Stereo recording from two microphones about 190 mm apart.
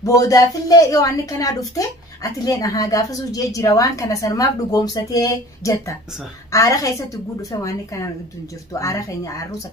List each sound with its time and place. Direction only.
0.0 s a woman's voice: 20° left (ahead or behind)